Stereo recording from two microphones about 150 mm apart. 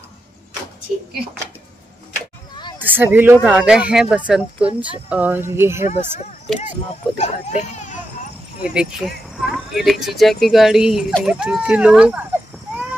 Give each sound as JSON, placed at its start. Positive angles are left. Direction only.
{"t": 2.8, "sound": "speech", "side_deg": -10}
{"t": 5.9, "sound": "speech", "side_deg": 55}
{"t": 8.6, "sound": "speech", "side_deg": -5}